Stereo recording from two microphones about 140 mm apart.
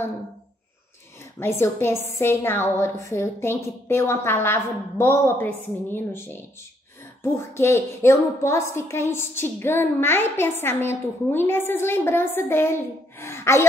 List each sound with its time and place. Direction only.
1.4 s a woman's voice: 15° left (ahead or behind)